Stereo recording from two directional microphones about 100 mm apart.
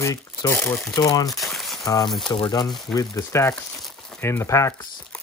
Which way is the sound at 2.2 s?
50° left (ahead or behind).